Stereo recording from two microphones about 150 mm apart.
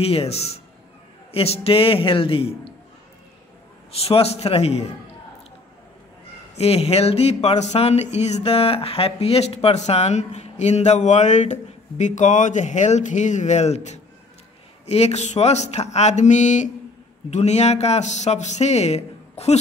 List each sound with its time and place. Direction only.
0.0 s a man's voice: 40° left (ahead or behind)
3.9 s a man's voice: 40° left (ahead or behind)
6.6 s speech: 45° left (ahead or behind)